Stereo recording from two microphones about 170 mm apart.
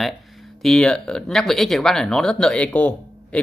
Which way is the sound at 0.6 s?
Centre (ahead or behind).